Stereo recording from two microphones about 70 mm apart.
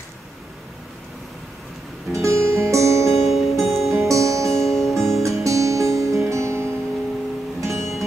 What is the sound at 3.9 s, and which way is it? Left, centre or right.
Music, right.